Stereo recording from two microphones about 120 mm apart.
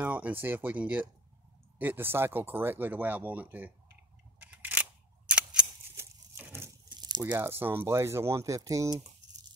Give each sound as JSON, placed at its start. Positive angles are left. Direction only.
{"t": 0.0, "sound": "speech", "side_deg": -10}
{"t": 4.4, "sound": "single-lens reflex camera", "side_deg": -15}
{"t": 5.2, "sound": "cap gun", "side_deg": -5}
{"t": 5.9, "sound": "a sound", "side_deg": -20}
{"t": 6.9, "sound": "crunch", "side_deg": -35}
{"t": 7.2, "sound": "speech", "side_deg": -20}